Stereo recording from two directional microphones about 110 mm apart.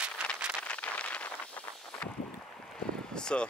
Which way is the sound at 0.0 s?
10° right (ahead or behind).